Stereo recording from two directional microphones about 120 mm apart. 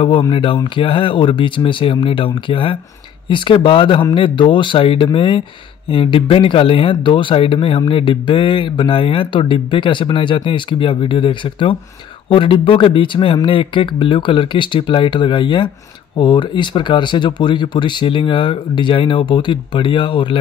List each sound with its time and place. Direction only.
0.3 s speech: 45° left (ahead or behind)